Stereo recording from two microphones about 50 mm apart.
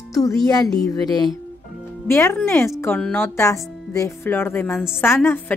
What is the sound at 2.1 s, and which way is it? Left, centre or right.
Speech, left.